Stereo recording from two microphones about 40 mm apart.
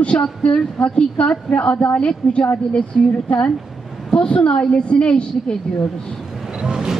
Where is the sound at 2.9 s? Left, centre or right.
Centre.